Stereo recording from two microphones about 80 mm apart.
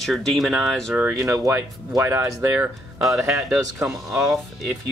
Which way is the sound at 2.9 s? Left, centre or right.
Centre.